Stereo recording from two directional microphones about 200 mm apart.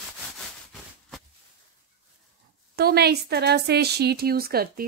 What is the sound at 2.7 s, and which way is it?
A woman's voice, 50° right (ahead or behind).